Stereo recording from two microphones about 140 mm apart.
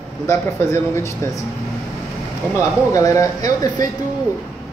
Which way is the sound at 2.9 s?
25° left (ahead or behind).